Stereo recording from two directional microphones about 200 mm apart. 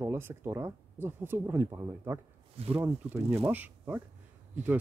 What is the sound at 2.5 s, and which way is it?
Speech, 30° right (ahead or behind).